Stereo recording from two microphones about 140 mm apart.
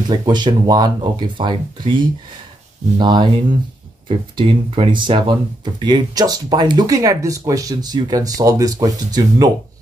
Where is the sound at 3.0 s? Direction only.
30° right (ahead or behind).